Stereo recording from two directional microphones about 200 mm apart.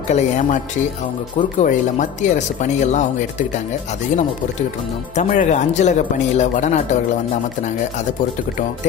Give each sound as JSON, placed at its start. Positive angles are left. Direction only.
{"t": 0.1, "sound": "speech", "side_deg": 35}
{"t": 1.6, "sound": "speech", "side_deg": 35}
{"t": 5.1, "sound": "speech", "side_deg": 40}